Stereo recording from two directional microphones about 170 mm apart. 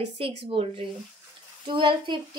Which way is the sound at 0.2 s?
35° right (ahead or behind).